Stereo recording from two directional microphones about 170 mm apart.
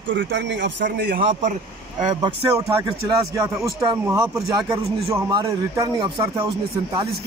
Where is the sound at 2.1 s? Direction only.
20° right (ahead or behind).